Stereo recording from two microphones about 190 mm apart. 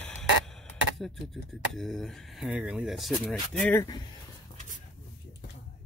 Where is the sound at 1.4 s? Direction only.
Centre (ahead or behind).